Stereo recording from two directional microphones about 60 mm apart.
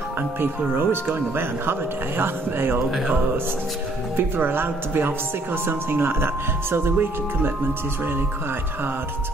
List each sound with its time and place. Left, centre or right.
0.4 s speech: right
4.2 s speech: right